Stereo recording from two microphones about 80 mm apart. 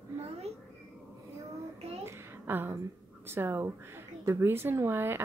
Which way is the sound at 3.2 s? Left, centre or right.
Right.